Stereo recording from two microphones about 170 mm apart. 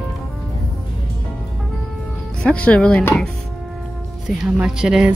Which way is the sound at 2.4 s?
5° left (ahead or behind).